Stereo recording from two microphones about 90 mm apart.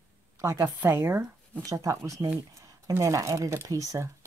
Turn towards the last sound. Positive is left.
turn(degrees=-35)  # may be behind; listen again after turning